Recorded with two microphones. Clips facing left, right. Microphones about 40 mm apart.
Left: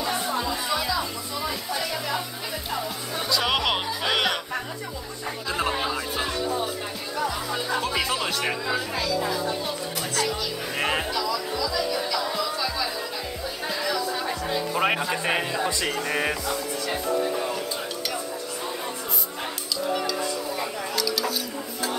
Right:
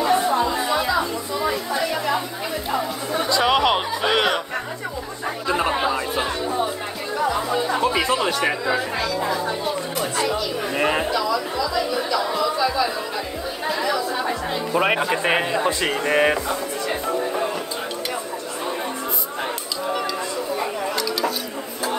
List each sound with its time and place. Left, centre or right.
0.4 s music: centre
1.5 s a sound: centre
3.2 s music: centre
5.5 s music: centre
7.2 s chatter: centre
10.3 s music: centre
13.7 s chatter: centre
14.7 s speech: centre
15.2 s speech: right